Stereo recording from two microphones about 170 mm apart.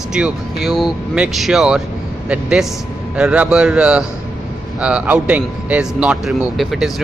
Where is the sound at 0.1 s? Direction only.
Centre (ahead or behind).